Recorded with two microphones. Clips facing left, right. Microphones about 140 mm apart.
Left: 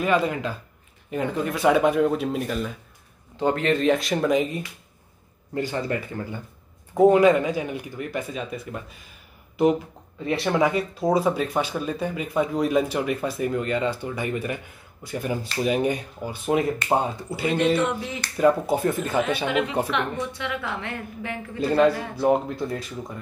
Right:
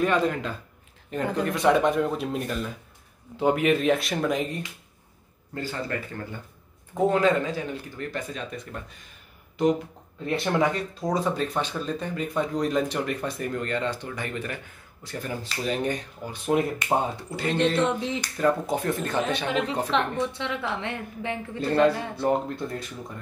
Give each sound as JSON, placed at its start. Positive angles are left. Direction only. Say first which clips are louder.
{"t": 0.0, "sound": "speech", "louder": "left 1 dB", "side_deg": 5}
{"t": 3.3, "sound": "speech", "louder": "even", "side_deg": -10}
{"t": 5.5, "sound": "speech", "louder": "left 5 dB", "side_deg": 20}
{"t": 10.2, "sound": "speech", "louder": "left 2 dB", "side_deg": 0}
{"t": 17.8, "sound": "a woman's voice", "louder": "right 1 dB", "side_deg": -25}
{"t": 18.4, "sound": "speech", "louder": "left 5 dB", "side_deg": 5}
{"t": 19.9, "sound": "a woman's voice", "louder": "right 1 dB", "side_deg": -30}
{"t": 21.6, "sound": "speech", "louder": "left 2 dB", "side_deg": 5}